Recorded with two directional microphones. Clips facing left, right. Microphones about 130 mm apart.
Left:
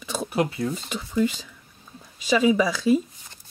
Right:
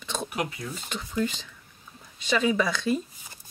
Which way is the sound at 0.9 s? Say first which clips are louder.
Left 2 dB; 10° left (ahead or behind).